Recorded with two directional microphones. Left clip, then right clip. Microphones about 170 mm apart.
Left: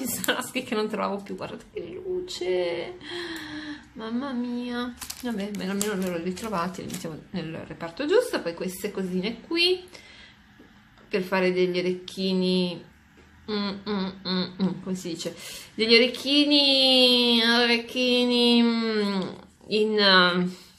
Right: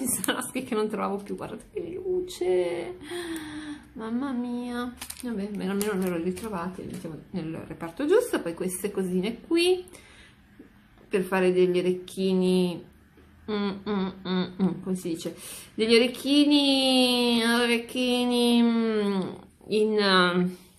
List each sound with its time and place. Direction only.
0.3 s a woman's voice: centre (ahead or behind)
7.3 s a woman's voice: 5° left (ahead or behind)
11.1 s a woman's voice: 10° right (ahead or behind)